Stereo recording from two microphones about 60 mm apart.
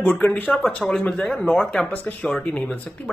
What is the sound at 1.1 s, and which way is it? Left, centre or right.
Speech, centre.